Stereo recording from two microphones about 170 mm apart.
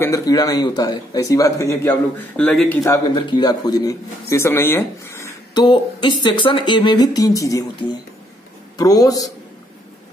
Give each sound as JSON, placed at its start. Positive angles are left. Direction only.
{"t": 0.0, "sound": "speech", "side_deg": 20}
{"t": 3.2, "sound": "speech", "side_deg": 25}